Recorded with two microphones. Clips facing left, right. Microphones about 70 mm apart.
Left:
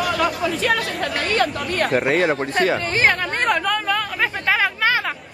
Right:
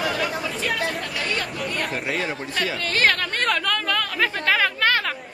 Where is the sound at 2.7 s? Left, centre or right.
Left.